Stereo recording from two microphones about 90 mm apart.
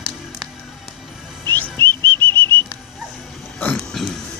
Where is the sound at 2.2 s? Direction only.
20° left (ahead or behind).